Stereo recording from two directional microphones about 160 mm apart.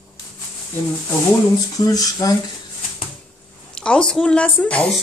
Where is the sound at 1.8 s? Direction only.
20° left (ahead or behind).